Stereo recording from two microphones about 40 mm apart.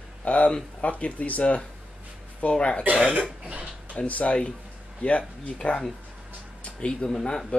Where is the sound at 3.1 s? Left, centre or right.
Right.